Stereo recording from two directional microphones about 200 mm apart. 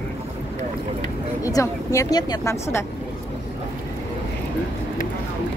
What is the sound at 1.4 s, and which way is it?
Speech, 15° left (ahead or behind).